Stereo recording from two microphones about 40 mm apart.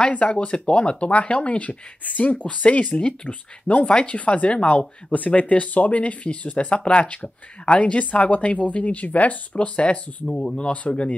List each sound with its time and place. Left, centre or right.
0.1 s speech: left
10.7 s speech: left